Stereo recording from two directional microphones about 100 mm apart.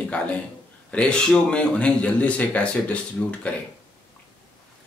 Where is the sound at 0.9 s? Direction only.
10° left (ahead or behind).